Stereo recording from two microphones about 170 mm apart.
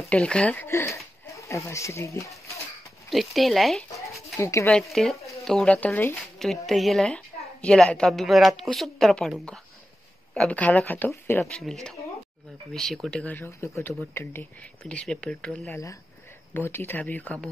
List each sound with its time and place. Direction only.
0.1 s speech: 5° left (ahead or behind)
3.1 s speech: centre (ahead or behind)
4.4 s speech: 15° left (ahead or behind)
4.9 s speech: centre (ahead or behind)
11.5 s speech: 5° left (ahead or behind)